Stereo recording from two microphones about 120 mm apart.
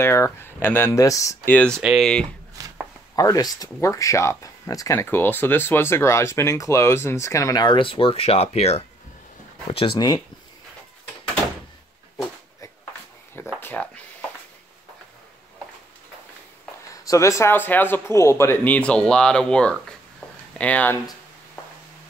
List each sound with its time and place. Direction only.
0.0 s speech: 20° left (ahead or behind)
1.5 s speech: 10° left (ahead or behind)
1.8 s speech: 5° right (ahead or behind)
2.6 s chopping: 30° right (ahead or behind)
3.2 s speech: 30° left (ahead or behind); by 8.8 s 60° left (ahead or behind)
9.7 s speech: 50° left (ahead or behind)
9.9 s speech: 35° left (ahead or behind)
13.6 s a sound: 15° left (ahead or behind)
16.9 s speech: 25° left (ahead or behind)